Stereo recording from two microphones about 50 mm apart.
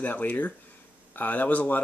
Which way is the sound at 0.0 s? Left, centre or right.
Left.